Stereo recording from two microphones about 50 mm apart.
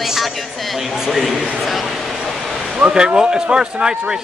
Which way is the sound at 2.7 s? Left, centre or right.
Centre.